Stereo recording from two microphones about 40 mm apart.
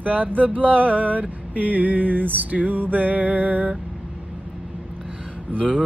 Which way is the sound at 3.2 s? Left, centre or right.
Right.